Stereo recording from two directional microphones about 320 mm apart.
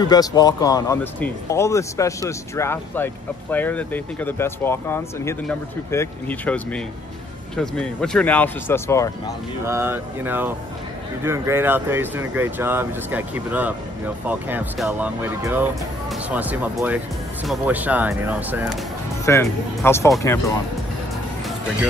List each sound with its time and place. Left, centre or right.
0.0 s speech: centre
9.7 s speech: centre
19.2 s speech: centre